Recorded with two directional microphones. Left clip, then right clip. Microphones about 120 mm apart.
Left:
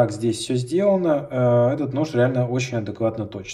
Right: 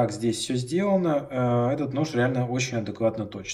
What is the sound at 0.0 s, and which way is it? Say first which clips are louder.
Speech: left 5 dB; 25° left (ahead or behind).